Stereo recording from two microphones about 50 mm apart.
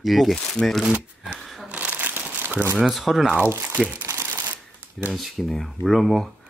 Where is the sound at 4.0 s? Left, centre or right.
Right.